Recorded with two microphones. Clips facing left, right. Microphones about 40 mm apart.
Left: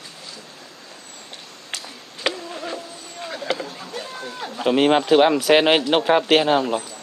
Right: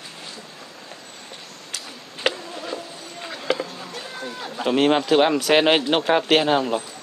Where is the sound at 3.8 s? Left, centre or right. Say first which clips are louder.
Left 1 dB; centre.